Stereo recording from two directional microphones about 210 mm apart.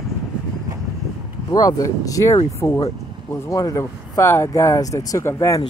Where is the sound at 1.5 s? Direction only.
15° left (ahead or behind).